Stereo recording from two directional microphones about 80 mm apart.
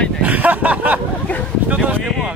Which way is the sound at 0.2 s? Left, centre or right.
Centre.